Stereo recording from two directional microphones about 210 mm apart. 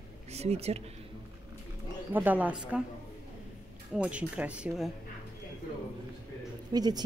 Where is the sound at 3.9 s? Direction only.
5° right (ahead or behind).